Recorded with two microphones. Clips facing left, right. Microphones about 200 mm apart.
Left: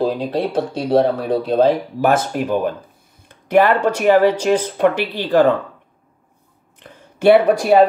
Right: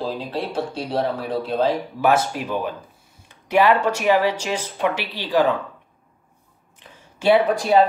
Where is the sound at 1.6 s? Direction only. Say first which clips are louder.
Left 4 dB; 50° left (ahead or behind).